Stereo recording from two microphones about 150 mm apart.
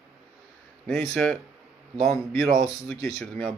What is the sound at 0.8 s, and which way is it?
Speech, 5° left (ahead or behind).